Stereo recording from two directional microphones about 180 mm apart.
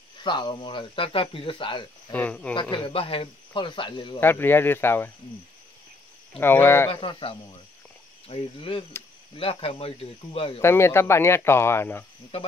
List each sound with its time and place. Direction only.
0.2 s speech: 25° left (ahead or behind)
2.1 s speech: 5° left (ahead or behind)
2.5 s speech: 25° left (ahead or behind)
4.2 s speech: 10° left (ahead or behind)
6.3 s speech: 10° left (ahead or behind)
6.9 s speech: 30° left (ahead or behind)
10.6 s speech: 15° left (ahead or behind)